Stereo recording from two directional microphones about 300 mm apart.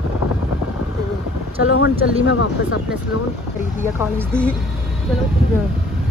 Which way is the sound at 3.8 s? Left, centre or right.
Centre.